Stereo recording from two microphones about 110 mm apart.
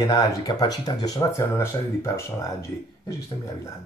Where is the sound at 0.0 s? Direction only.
35° left (ahead or behind).